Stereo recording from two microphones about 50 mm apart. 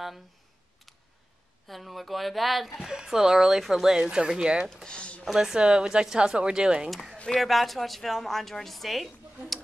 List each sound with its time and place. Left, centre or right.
1.7 s a woman's voice: centre
2.9 s speech: centre
4.8 s a sound: left
5.3 s speech: centre
6.9 s a woman's voice: centre